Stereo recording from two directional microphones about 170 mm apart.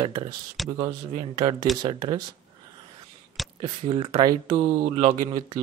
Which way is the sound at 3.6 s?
35° right (ahead or behind).